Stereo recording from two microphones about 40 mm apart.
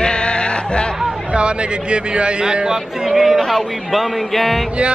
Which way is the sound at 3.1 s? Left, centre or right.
Centre.